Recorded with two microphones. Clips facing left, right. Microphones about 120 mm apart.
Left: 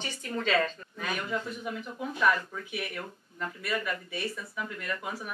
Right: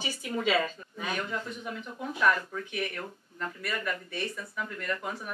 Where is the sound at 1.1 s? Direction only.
5° left (ahead or behind).